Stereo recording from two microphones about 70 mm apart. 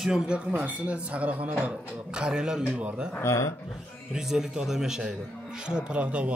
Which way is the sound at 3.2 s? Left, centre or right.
Left.